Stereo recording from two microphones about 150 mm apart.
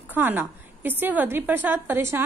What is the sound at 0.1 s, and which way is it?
A woman's voice, 10° right (ahead or behind).